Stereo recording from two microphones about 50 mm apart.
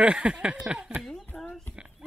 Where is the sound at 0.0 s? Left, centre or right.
Centre.